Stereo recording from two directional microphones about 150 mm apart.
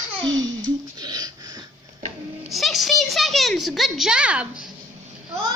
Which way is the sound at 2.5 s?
Centre (ahead or behind).